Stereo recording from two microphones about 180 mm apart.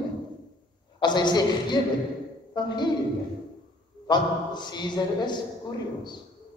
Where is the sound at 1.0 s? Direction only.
25° left (ahead or behind).